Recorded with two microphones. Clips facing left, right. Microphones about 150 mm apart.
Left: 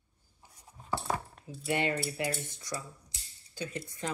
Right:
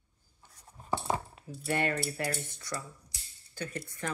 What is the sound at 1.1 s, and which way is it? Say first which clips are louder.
Cutlery: right 1 dB; 20° right (ahead or behind).